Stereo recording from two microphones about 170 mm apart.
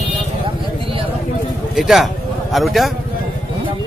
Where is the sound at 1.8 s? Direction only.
Centre (ahead or behind).